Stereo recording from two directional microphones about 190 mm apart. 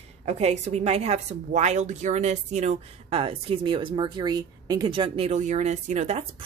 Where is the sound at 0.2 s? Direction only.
35° right (ahead or behind).